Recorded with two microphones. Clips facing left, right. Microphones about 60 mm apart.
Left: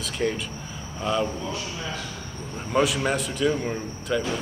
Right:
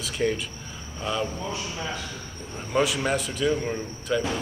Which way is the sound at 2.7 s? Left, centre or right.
Centre.